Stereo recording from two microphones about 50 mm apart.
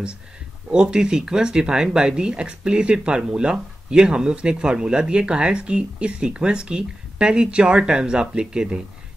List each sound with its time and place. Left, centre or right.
0.7 s speech: centre